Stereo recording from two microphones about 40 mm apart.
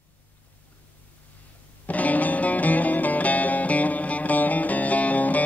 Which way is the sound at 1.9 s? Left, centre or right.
Left.